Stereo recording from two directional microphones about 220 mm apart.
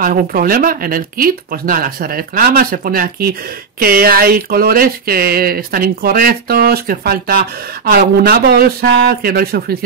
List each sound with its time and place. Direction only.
0.0 s speech: 40° right (ahead or behind)